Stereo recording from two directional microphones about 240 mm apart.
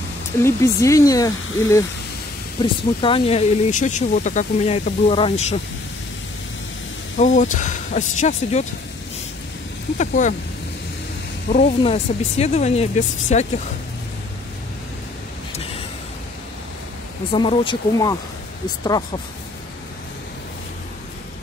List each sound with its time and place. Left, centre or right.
0.4 s speech: centre
7.2 s speech: left
9.9 s speech: left
11.4 s speech: left
17.3 s speech: left